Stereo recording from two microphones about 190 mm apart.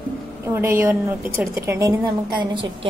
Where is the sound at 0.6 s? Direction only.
15° right (ahead or behind).